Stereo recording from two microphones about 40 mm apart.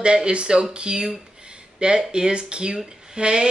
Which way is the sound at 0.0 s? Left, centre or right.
Right.